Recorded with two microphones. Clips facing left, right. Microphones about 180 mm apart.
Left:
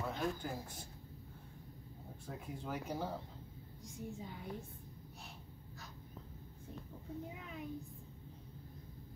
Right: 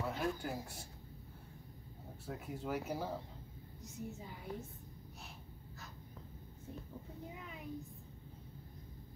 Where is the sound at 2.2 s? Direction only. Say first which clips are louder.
Right 3 dB; 5° right (ahead or behind).